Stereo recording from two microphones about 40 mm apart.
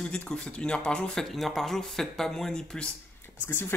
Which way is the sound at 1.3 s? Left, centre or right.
Centre.